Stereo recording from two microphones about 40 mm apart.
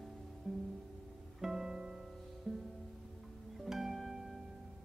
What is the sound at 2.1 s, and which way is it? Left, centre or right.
Music, centre.